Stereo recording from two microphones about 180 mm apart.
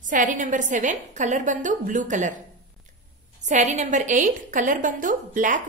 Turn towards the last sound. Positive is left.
turn(degrees=-45)  # may be behind; listen again after turning